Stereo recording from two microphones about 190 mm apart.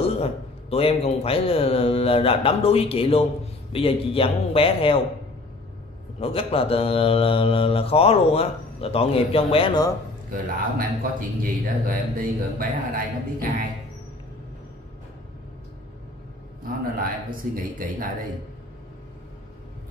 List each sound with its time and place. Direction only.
0.0 s a man's voice: 30° left (ahead or behind)
6.1 s speech: 30° left (ahead or behind)
10.3 s speech: 50° right (ahead or behind)
17.0 s speech: 45° right (ahead or behind)